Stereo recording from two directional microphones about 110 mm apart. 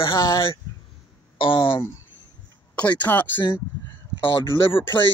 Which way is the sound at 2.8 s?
15° left (ahead or behind).